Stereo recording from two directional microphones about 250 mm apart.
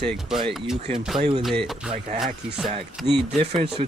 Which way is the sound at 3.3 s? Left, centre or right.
Right.